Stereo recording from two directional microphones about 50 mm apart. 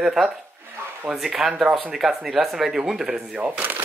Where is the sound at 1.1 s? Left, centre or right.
Centre.